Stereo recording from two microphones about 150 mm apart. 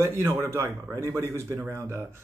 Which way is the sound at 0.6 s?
15° right (ahead or behind).